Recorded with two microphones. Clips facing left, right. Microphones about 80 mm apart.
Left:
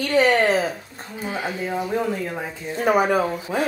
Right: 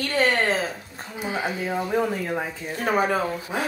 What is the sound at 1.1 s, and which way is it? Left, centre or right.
Speech, centre.